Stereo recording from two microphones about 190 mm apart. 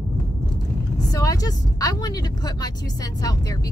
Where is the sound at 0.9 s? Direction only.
20° left (ahead or behind).